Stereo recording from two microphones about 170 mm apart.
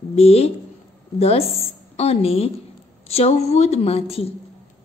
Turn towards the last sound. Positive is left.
turn(degrees=35)  # may be behind; listen again after turning